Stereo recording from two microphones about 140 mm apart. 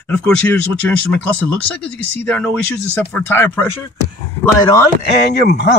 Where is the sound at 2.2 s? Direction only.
10° left (ahead or behind).